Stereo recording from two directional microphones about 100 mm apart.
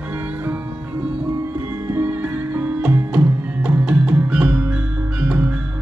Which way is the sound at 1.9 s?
15° right (ahead or behind).